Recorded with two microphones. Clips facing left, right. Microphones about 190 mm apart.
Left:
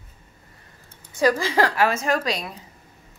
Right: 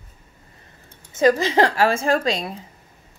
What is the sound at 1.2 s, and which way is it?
Speech, 20° right (ahead or behind).